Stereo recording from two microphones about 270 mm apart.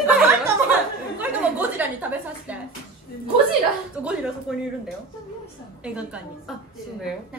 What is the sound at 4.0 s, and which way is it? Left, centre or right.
Speech, centre.